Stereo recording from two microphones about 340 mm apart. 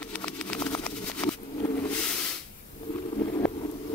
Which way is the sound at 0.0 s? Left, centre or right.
Centre.